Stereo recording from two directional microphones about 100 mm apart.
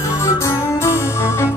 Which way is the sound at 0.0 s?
30° left (ahead or behind).